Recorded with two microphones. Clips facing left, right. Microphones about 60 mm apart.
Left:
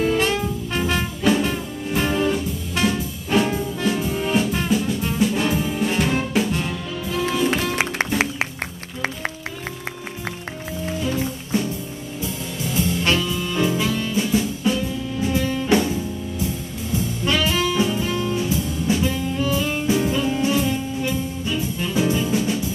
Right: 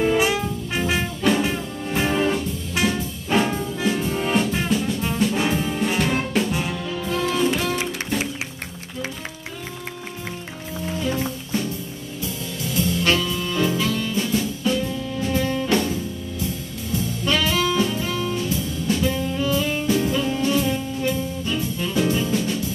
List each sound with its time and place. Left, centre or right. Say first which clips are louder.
0.0 s music: even; centre
7.7 s music: left 3 dB; left
12.6 s music: even; centre
17.3 s jazz: even; centre